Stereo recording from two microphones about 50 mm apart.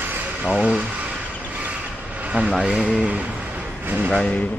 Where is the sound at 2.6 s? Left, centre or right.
Centre.